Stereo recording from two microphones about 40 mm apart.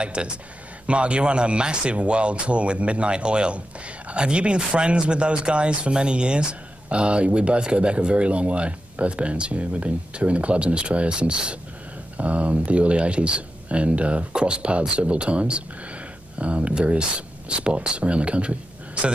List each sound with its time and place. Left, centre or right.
0.0 s speech: right